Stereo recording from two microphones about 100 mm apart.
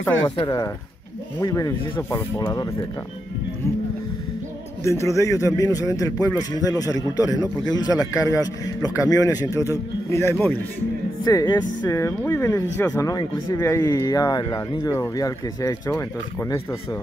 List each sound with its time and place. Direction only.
1.4 s a man's voice: 35° left (ahead or behind)
4.8 s a man's voice: 30° left (ahead or behind)
11.2 s a man's voice: 40° left (ahead or behind)
11.9 s a man's voice: 30° left (ahead or behind)
14.0 s a man's voice: 40° left (ahead or behind)